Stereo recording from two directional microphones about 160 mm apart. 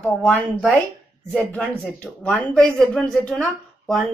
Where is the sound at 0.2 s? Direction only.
5° left (ahead or behind).